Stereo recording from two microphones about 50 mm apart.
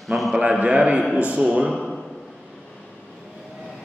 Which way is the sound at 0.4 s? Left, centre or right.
Right.